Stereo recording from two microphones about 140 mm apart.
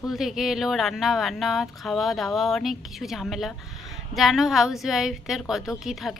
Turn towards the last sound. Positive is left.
turn(degrees=0)  # may be behind; listen again after turning